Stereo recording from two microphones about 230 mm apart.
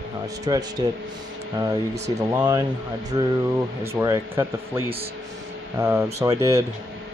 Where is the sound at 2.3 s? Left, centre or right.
Centre.